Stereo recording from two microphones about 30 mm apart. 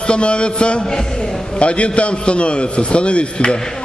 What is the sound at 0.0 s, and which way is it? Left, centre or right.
A man's voice, left.